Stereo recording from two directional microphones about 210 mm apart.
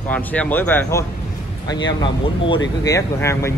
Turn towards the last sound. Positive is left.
turn(degrees=15)  # may be behind; listen again after turning